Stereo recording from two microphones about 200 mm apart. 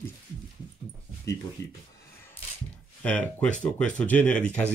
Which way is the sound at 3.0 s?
5° left (ahead or behind).